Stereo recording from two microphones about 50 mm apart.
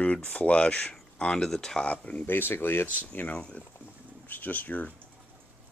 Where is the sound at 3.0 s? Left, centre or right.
Left.